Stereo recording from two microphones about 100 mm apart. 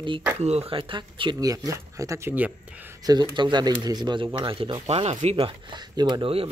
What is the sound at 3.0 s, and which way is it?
Speech, 45° right (ahead or behind).